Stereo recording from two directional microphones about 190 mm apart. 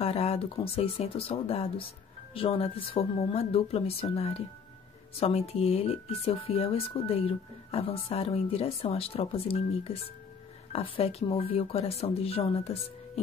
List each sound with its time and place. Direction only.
0.0 s speech: 30° left (ahead or behind)